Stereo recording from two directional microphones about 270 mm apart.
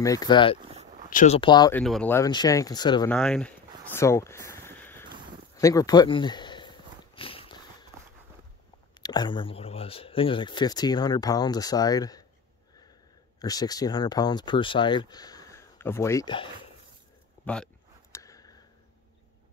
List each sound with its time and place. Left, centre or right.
0.0 s speech: centre
0.6 s a sound: right
1.1 s speech: left
1.8 s speech: centre
3.1 s speech: centre
3.9 s a sound: centre
9.0 s speech: centre
13.4 s speech: centre
18.1 s a sound: centre